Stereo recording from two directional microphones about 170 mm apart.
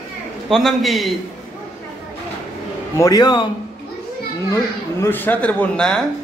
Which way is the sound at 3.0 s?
20° left (ahead or behind).